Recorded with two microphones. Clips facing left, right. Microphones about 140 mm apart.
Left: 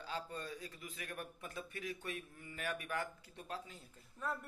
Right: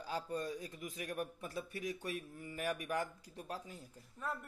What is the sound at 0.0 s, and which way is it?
A man's voice, 10° right (ahead or behind).